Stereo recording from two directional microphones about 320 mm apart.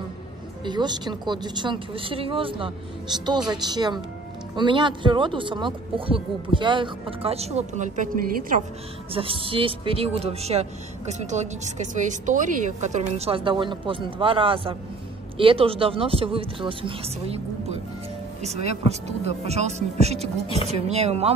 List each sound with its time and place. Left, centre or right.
0.7 s speech: centre